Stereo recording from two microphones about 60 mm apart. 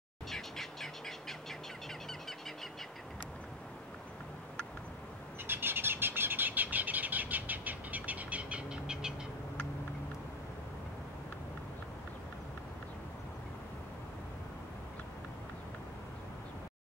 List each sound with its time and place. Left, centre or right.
0.3 s bird: centre
5.5 s bird: right; by 9.1 s centre